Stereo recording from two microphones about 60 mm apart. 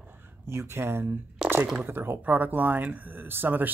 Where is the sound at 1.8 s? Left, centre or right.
Right.